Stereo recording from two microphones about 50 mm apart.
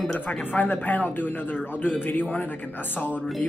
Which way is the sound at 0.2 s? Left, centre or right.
Left.